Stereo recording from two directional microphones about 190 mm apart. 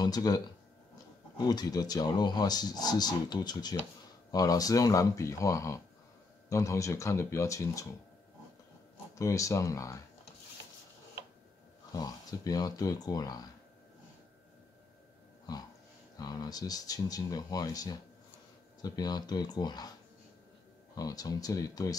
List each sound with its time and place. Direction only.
0.0 s speech: 20° left (ahead or behind)
1.5 s speech: 20° left (ahead or behind)
9.1 s speech: 15° left (ahead or behind)
11.9 s speech: 20° left (ahead or behind)
15.5 s speech: 20° left (ahead or behind)
20.9 s speech: 20° left (ahead or behind)